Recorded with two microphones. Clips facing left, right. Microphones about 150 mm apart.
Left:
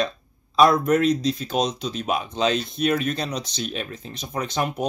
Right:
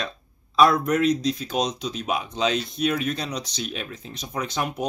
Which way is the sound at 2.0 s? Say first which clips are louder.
Left 2 dB; 5° left (ahead or behind).